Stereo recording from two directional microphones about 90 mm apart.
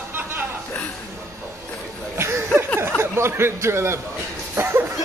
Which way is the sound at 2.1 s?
35° right (ahead or behind).